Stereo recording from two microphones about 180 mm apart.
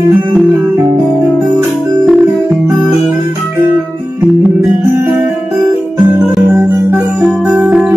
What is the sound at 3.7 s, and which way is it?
Music, 10° right (ahead or behind).